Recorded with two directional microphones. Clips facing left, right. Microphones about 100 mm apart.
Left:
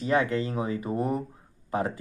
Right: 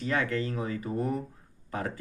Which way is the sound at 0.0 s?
20° left (ahead or behind).